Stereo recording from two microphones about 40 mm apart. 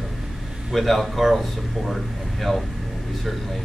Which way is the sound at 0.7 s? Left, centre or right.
Centre.